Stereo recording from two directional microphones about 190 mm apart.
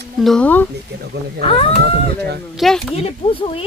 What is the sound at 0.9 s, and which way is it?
Speech, 60° right (ahead or behind).